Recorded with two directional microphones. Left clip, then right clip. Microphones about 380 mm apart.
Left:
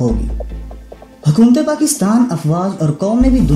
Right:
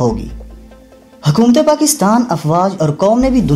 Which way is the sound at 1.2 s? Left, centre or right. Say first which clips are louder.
Right 2 dB; centre.